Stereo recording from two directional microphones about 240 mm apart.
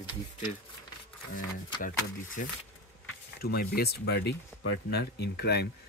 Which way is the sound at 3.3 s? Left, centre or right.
Left.